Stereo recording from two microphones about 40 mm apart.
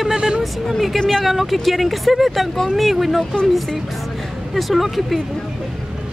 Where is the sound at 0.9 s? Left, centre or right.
Centre.